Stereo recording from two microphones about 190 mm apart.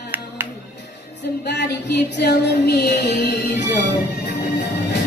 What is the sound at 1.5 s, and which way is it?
Music, 60° left (ahead or behind).